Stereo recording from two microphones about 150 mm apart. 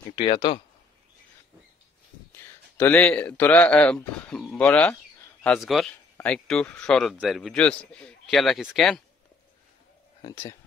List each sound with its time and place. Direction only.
0.1 s speech: 35° left (ahead or behind)
2.8 s a man's voice: 10° left (ahead or behind)